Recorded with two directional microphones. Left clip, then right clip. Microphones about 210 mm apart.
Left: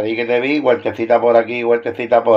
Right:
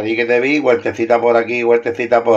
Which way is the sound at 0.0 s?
5° right (ahead or behind).